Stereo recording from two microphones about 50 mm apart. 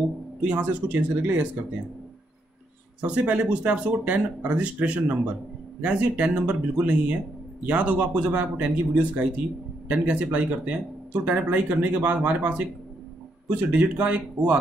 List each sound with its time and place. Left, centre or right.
0.4 s speech: right
3.0 s speech: right